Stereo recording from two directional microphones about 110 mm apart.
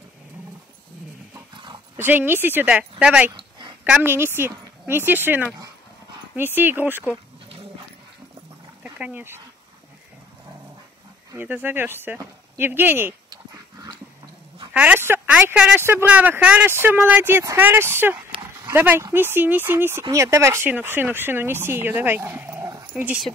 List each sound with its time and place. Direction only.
2.0 s speech: 15° right (ahead or behind)
3.3 s a sound: 45° right (ahead or behind)
3.8 s speech: 15° right (ahead or behind)
8.9 s speech: 15° right (ahead or behind)
11.3 s speech: 15° right (ahead or behind)
14.7 s speech: 10° right (ahead or behind)